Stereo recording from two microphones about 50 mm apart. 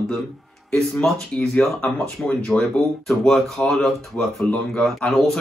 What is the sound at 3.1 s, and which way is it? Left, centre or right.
Speech, centre.